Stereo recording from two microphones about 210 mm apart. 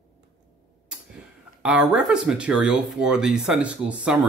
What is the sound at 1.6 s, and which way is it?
Speech, 5° right (ahead or behind).